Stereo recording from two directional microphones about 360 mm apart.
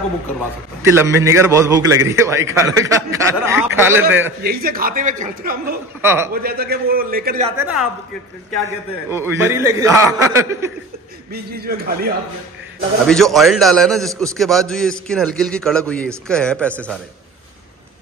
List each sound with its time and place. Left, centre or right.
0.8 s a man's voice: centre
4.4 s a man's voice: right
6.0 s a man's voice: centre
6.4 s a man's voice: right
7.5 s a man's voice: centre
9.1 s a man's voice: centre
11.3 s a man's voice: right
13.0 s a man's voice: centre